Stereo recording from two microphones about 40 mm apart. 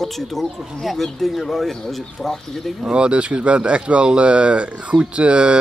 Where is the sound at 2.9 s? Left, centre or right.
Right.